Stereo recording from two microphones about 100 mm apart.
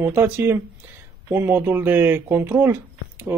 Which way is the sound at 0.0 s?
20° right (ahead or behind).